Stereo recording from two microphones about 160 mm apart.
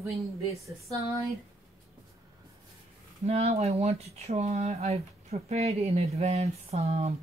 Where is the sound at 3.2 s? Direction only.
40° right (ahead or behind).